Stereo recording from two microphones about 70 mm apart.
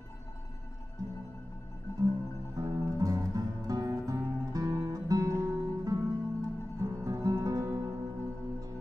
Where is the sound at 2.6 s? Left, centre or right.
Right.